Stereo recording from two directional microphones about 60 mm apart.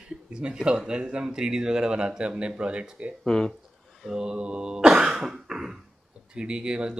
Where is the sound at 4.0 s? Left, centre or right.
Centre.